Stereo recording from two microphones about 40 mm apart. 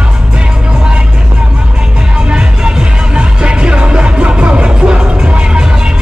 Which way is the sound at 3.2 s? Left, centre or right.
Right.